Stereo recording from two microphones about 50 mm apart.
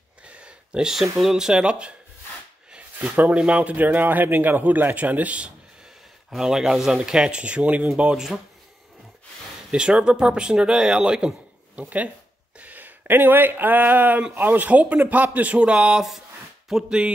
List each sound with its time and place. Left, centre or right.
0.2 s a sound: right
1.1 s speech: centre
2.7 s a sound: right
3.3 s a man's voice: right
6.3 s speech: centre; by 7.9 s right
8.0 s speech: centre
9.7 s speech: centre
12.5 s a man's voice: right; by 17.0 s centre